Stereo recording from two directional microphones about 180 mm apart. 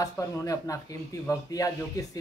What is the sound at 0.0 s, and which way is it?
Speech, 20° left (ahead or behind).